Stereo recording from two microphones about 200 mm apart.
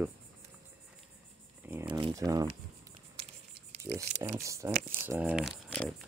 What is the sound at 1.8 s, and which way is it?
Speech, 20° right (ahead or behind).